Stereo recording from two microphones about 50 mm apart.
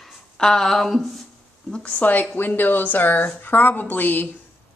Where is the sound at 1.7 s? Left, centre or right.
Centre.